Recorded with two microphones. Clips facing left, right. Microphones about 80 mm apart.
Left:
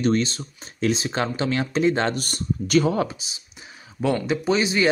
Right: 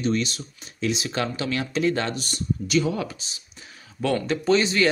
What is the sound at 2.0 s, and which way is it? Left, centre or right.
Speech, left.